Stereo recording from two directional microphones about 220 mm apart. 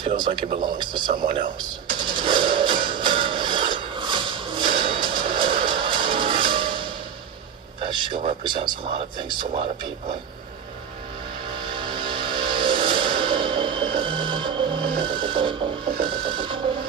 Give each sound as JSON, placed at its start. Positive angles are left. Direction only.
{"t": 0.6, "sound": "speech", "side_deg": -20}
{"t": 1.6, "sound": "music", "side_deg": -20}
{"t": 7.8, "sound": "speech", "side_deg": -20}
{"t": 11.6, "sound": "music", "side_deg": -20}
{"t": 16.0, "sound": "wood", "side_deg": -20}